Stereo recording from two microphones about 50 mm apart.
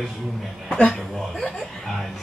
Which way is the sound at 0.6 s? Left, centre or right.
Left.